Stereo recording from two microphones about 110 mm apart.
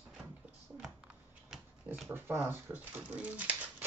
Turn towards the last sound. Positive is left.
turn(degrees=-15)  # may be behind; listen again after turning